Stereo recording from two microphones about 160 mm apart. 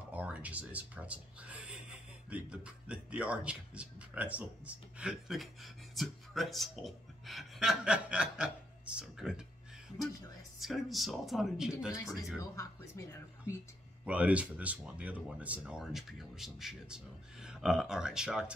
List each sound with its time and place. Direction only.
0.1 s speech: 10° right (ahead or behind)
10.6 s speech: centre (ahead or behind)
12.4 s speech: 20° left (ahead or behind)
14.0 s speech: 10° right (ahead or behind)